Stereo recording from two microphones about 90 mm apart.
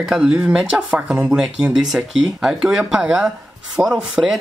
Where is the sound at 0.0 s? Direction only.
10° right (ahead or behind).